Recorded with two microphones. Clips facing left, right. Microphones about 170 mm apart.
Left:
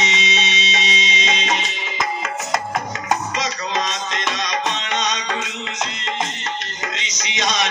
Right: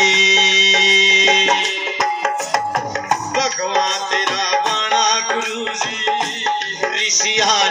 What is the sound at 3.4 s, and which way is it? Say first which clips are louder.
Music: right 5 dB; 40° right (ahead or behind).